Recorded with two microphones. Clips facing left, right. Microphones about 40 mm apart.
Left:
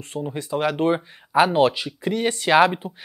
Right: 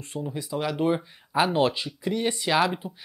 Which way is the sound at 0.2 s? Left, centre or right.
Left.